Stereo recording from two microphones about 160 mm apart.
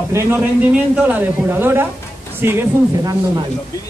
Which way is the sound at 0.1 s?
15° right (ahead or behind).